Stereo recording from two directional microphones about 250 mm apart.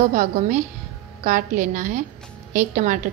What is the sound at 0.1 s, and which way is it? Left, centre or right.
A woman's voice, right.